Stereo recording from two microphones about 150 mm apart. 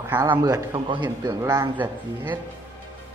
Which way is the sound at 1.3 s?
20° right (ahead or behind).